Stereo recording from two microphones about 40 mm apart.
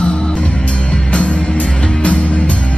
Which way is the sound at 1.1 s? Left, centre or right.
Left.